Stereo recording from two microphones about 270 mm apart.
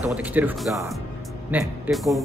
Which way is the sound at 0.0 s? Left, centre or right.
Centre.